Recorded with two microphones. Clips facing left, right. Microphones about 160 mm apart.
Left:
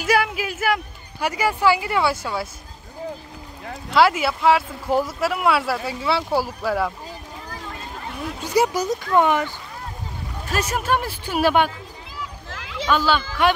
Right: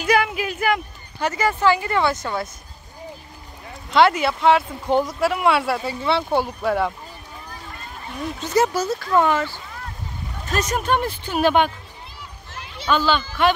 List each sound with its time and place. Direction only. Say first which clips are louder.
0.0 s a sound: right 1 dB; 5° left (ahead or behind)
1.2 s speech: even; 10° left (ahead or behind)
3.9 s speech: right 1 dB; 5° left (ahead or behind)
8.4 s speech: even; 10° left (ahead or behind)
10.5 s speech: right 1 dB; 5° left (ahead or behind)
12.2 s a sound: left 6 dB; 90° left
12.9 s speech: even; 10° left (ahead or behind)